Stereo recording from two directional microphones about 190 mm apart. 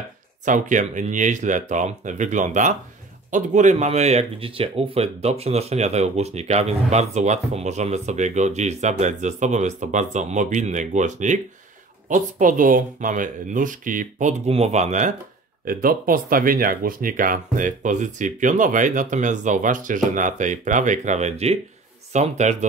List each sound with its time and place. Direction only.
0.5 s speech: 40° right (ahead or behind)